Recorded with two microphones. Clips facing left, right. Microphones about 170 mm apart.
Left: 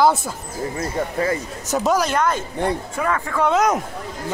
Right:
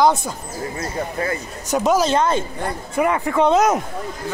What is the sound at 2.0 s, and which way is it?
Speech, 25° right (ahead or behind).